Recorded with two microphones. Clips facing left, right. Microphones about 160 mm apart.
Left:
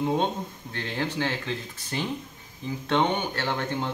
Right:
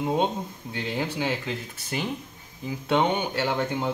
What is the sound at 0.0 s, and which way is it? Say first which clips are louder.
Speech: right 1 dB; 10° right (ahead or behind).